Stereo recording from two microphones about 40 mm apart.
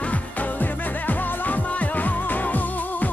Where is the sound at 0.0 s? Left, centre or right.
Left.